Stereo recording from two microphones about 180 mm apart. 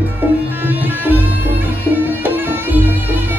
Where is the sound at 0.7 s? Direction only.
10° right (ahead or behind).